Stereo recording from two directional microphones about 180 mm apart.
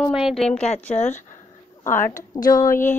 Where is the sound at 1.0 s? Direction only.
40° left (ahead or behind).